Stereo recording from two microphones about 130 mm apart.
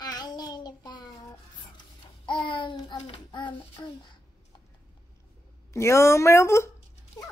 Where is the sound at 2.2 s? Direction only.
40° left (ahead or behind).